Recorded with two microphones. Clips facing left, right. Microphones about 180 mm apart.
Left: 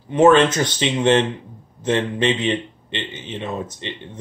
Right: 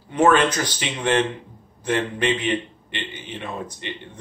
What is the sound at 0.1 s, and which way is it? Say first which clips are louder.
A man's voice: left 4 dB; 25° left (ahead or behind).